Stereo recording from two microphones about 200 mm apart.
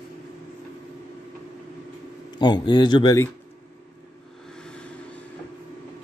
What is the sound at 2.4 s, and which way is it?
Speech, 20° left (ahead or behind).